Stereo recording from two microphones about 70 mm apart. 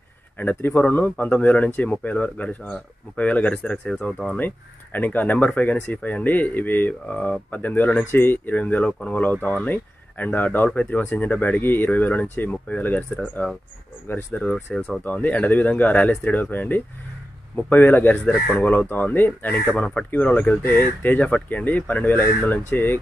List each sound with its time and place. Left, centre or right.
0.4 s speech: left
4.4 s speech: left
14.3 s speech: centre; by 19.6 s left
19.8 s speech: centre